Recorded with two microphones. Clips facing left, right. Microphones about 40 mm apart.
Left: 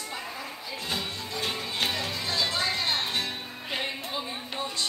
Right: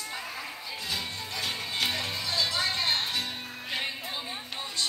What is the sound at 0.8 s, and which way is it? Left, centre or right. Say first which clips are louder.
Music: left 2 dB; left.